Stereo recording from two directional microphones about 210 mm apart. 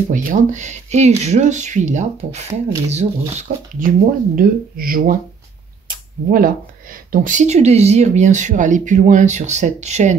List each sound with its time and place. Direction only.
0.1 s speech: 35° right (ahead or behind)